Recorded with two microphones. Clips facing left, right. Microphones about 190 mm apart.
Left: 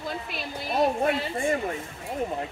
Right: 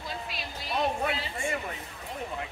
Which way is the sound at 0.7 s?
40° left (ahead or behind).